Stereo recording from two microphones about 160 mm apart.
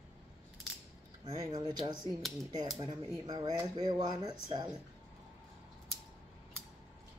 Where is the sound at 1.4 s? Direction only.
25° right (ahead or behind).